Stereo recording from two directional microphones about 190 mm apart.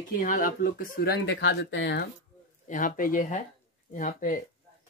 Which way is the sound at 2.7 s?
45° left (ahead or behind).